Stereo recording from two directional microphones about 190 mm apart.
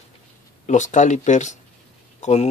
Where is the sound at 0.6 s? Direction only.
40° left (ahead or behind).